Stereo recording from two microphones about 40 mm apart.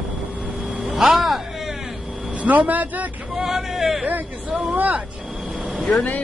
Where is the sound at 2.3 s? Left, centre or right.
Right.